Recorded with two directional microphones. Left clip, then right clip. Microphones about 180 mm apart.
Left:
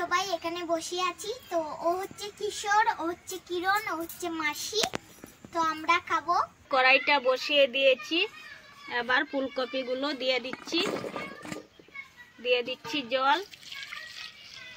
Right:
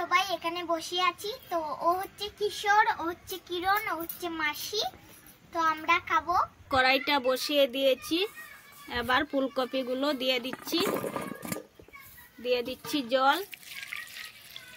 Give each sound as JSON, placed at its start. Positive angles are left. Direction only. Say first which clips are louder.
{"t": 0.0, "sound": "a child's voice", "louder": "right 1 dB", "side_deg": 20}
{"t": 6.7, "sound": "speech", "louder": "left 3 dB", "side_deg": -90}
{"t": 8.8, "sound": "speech", "louder": "left 1 dB", "side_deg": -55}
{"t": 10.9, "sound": "a child's voice", "louder": "right 2 dB", "side_deg": -25}
{"t": 12.4, "sound": "a woman's voice", "louder": "left 2 dB", "side_deg": -85}